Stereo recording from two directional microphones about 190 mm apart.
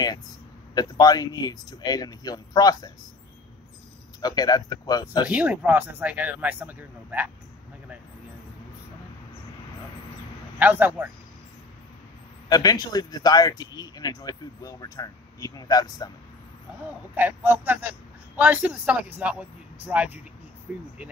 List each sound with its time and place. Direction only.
0.7 s speech: 20° left (ahead or behind)
4.2 s speech: 20° left (ahead or behind)
5.3 s speech: 5° right (ahead or behind)
10.6 s speech: 10° right (ahead or behind)
12.4 s speech: 20° left (ahead or behind)
17.1 s speech: 10° right (ahead or behind)